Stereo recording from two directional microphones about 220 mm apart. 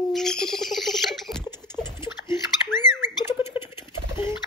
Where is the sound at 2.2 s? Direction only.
20° left (ahead or behind).